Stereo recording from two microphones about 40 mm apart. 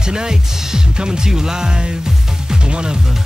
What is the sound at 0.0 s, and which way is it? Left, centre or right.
Music, centre.